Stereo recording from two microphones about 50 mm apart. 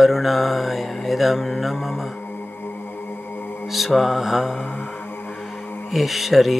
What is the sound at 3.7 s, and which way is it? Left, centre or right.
Speech, centre.